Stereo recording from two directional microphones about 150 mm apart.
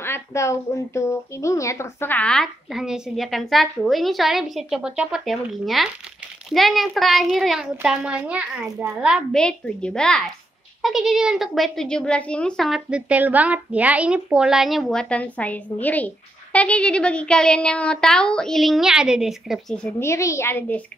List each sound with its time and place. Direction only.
0.0 s a child's voice: 15° left (ahead or behind); by 9.2 s 5° right (ahead or behind)
9.3 s speech: 5° left (ahead or behind)
20.0 s a woman's voice: 20° left (ahead or behind)